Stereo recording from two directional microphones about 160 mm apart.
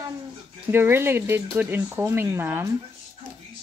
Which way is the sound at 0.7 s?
15° right (ahead or behind).